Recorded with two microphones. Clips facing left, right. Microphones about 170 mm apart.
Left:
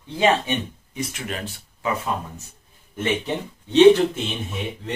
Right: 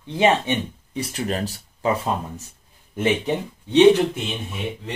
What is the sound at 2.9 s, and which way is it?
Speech, 15° right (ahead or behind).